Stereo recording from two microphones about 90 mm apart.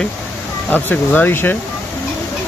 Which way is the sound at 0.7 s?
20° left (ahead or behind).